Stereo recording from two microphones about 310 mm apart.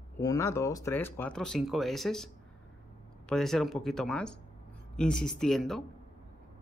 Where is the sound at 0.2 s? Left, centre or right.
Centre.